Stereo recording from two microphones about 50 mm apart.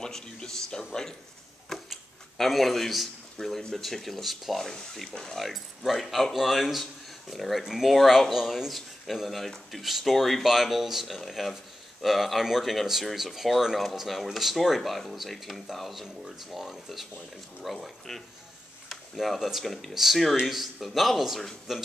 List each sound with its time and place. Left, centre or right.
0.0 s speech: centre
1.9 s speech: centre
5.4 s speech: centre